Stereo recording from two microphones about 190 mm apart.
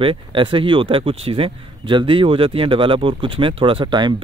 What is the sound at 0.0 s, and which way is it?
A man's voice, 25° right (ahead or behind).